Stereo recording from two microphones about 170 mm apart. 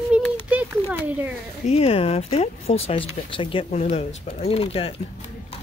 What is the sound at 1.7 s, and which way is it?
Speech, 35° left (ahead or behind).